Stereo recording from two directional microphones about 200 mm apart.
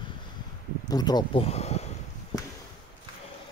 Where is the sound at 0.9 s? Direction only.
20° left (ahead or behind).